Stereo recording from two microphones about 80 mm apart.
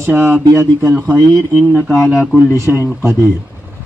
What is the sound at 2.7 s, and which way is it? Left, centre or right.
Speech, centre.